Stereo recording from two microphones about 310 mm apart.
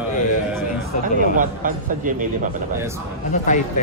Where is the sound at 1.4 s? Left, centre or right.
Right.